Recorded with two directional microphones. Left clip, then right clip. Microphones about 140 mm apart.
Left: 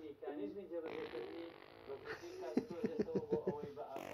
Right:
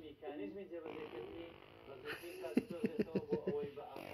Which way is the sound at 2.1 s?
25° right (ahead or behind).